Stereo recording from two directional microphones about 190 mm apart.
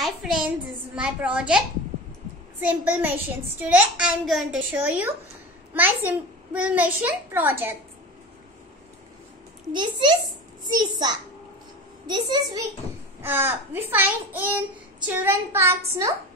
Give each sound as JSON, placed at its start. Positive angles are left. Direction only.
{"t": 0.0, "sound": "child singing", "side_deg": -5}
{"t": 0.9, "sound": "a child's voice", "side_deg": -5}
{"t": 2.6, "sound": "a child's voice", "side_deg": -10}
{"t": 9.7, "sound": "a child's voice", "side_deg": -25}